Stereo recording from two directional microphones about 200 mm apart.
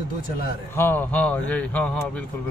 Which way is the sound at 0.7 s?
10° left (ahead or behind).